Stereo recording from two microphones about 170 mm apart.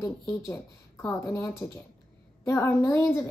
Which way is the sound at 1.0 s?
20° left (ahead or behind).